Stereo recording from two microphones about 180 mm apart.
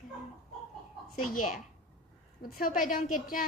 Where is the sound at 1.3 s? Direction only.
50° left (ahead or behind).